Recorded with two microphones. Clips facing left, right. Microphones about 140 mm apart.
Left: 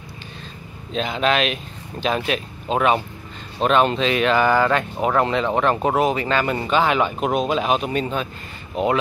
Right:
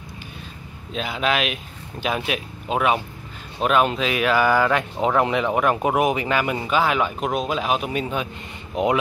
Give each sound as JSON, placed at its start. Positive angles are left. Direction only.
{"t": 0.9, "sound": "speech", "side_deg": -5}